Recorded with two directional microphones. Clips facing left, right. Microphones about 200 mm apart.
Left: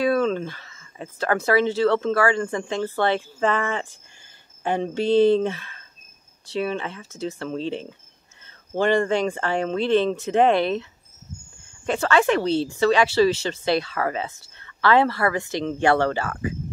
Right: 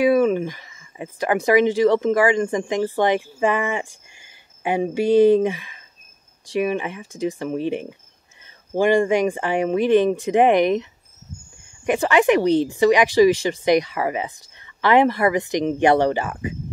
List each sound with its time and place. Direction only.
0.0 s speech: 10° right (ahead or behind)